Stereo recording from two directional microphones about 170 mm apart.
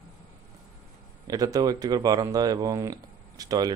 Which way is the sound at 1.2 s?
20° right (ahead or behind).